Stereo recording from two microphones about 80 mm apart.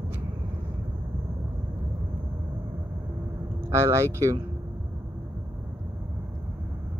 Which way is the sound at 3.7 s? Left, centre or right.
Right.